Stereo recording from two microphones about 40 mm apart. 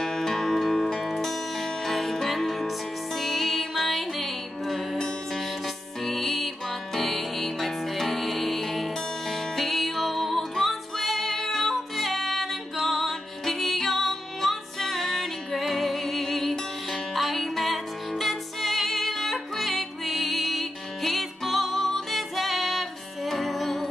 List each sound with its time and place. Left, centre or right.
0.0 s music: centre
4.9 s music: centre
6.0 s music: centre